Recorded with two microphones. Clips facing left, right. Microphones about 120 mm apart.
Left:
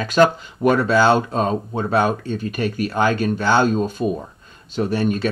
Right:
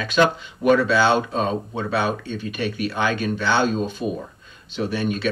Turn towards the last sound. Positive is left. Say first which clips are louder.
# left 3 dB
turn(degrees=40)  # may be behind; listen again after turning